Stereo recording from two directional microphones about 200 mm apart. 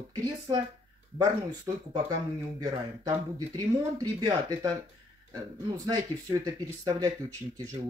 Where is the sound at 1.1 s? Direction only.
20° right (ahead or behind).